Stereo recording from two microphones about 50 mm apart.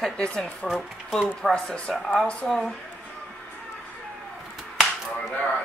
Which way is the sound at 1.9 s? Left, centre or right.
Centre.